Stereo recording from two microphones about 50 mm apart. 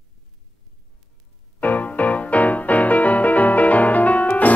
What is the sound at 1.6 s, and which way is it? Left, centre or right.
Music, left.